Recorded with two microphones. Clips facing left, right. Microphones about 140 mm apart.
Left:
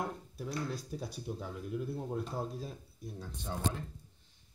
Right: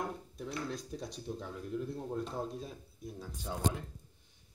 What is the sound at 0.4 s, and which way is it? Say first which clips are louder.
Speech: left 1 dB; 5° left (ahead or behind).